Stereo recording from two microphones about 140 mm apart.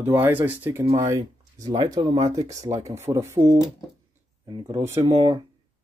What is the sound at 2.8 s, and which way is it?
Speech, 50° right (ahead or behind).